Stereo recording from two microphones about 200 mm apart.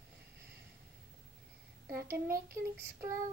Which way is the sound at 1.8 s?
15° right (ahead or behind).